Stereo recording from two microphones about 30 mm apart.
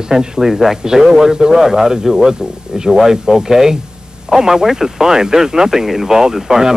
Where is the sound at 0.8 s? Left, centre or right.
Right.